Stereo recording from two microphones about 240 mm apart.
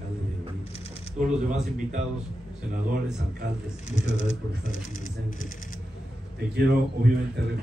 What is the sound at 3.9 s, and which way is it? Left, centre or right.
Speech, left.